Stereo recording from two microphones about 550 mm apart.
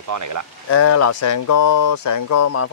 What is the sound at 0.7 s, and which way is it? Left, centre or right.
Speech, left.